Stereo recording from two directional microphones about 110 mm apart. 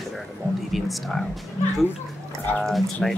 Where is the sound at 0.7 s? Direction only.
Centre (ahead or behind).